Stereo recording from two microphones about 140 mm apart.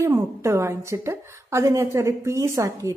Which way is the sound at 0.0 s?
20° right (ahead or behind).